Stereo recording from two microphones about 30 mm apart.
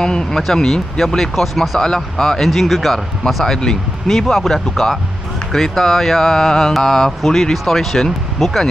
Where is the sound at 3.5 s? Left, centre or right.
Left.